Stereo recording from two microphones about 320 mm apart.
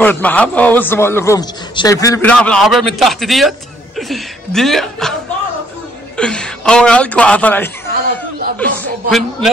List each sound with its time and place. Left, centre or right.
0.0 s a man's voice: centre
6.1 s a man's voice: centre
7.9 s a sound: right
8.5 s a man's voice: centre